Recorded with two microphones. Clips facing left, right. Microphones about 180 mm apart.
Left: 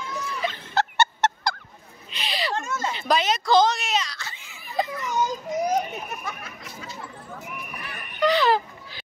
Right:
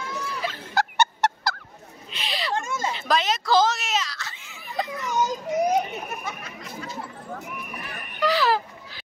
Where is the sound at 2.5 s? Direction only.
10° right (ahead or behind).